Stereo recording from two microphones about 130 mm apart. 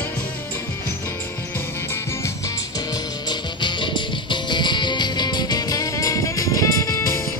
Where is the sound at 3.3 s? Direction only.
35° left (ahead or behind).